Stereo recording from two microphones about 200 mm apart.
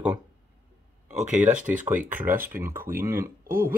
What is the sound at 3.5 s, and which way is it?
Speech, 45° right (ahead or behind).